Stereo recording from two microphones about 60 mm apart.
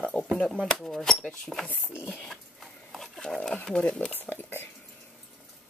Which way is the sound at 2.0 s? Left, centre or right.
Left.